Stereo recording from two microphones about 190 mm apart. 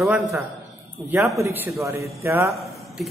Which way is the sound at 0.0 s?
Centre (ahead or behind).